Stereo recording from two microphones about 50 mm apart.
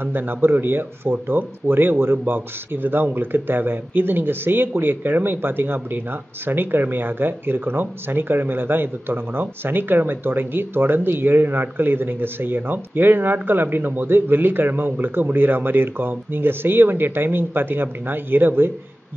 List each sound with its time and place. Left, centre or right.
0.0 s speech: right